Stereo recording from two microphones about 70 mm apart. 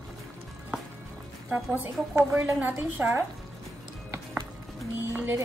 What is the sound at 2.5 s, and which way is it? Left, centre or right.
Speech, right.